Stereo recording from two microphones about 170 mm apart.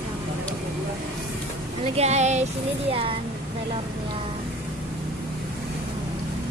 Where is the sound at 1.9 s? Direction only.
40° right (ahead or behind).